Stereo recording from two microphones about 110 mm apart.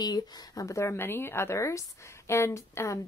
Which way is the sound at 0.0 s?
35° left (ahead or behind).